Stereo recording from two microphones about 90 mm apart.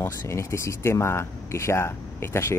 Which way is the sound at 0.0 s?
30° left (ahead or behind).